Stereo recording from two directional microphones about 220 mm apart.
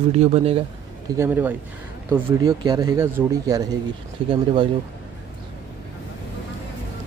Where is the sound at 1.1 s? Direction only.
10° right (ahead or behind).